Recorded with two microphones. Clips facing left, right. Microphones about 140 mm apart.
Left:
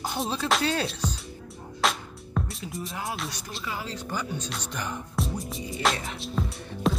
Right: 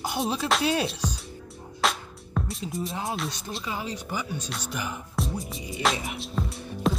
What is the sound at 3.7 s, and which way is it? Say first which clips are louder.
Music: right 2 dB; 20° right (ahead or behind).